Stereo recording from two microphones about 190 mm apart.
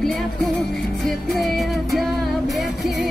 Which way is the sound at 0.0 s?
5° left (ahead or behind).